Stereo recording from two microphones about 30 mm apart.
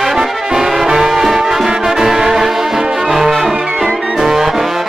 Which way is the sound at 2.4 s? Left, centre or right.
Centre.